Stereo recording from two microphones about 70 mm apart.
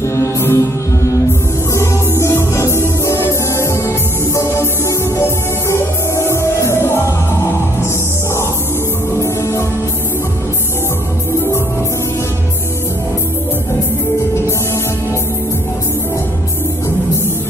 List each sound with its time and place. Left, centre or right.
0.1 s music: left
1.7 s music: left
9.2 s music: left